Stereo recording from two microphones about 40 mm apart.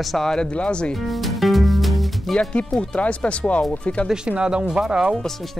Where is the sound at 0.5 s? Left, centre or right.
Left.